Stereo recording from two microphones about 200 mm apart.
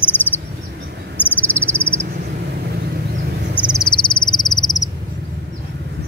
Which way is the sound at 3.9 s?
25° left (ahead or behind).